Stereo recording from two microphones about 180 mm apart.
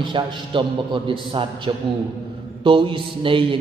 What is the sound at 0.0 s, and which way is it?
A man's voice, 25° right (ahead or behind).